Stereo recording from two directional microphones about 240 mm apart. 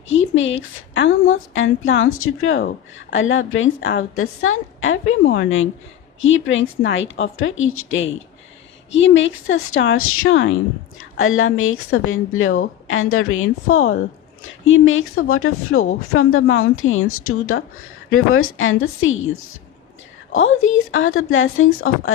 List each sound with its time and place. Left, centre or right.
0.1 s a woman's voice: left
20.3 s a woman's voice: left